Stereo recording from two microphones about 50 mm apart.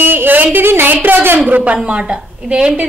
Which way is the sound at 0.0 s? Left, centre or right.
Right.